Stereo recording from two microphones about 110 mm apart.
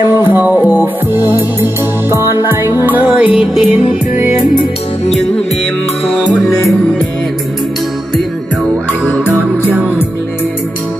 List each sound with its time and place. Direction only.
0.3 s music: 15° right (ahead or behind)
9.7 s music: 15° right (ahead or behind)